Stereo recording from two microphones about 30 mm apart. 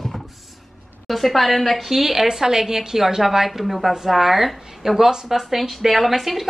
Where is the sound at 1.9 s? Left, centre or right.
Centre.